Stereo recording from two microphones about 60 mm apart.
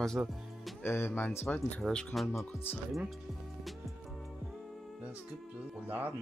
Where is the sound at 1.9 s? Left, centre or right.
Centre.